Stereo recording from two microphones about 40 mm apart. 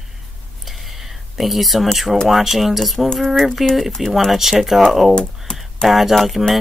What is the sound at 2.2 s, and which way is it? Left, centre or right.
Speech, centre.